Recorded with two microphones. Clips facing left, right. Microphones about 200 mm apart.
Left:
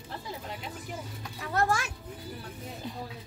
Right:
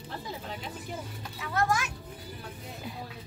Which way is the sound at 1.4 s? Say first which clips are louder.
Left 1 dB; 35° left (ahead or behind).